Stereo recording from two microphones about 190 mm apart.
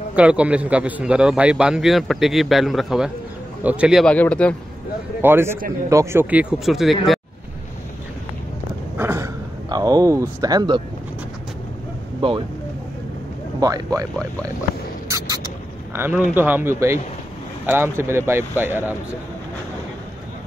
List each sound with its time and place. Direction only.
0.1 s a man's voice: 5° right (ahead or behind)
4.0 s speech: 5° left (ahead or behind)
5.2 s speech: 10° right (ahead or behind)
6.6 s a man's voice: centre (ahead or behind)
8.9 s a sound: 10° right (ahead or behind)
12.2 s speech: 25° right (ahead or behind)
13.6 s speech: 20° right (ahead or behind)
15.0 s a sound: 15° right (ahead or behind)
15.9 s a man's voice: 10° right (ahead or behind)